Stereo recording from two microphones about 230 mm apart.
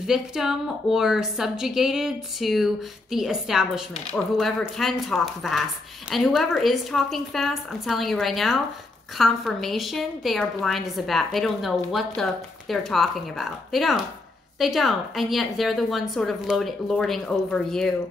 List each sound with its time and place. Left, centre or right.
0.0 s a woman's voice: centre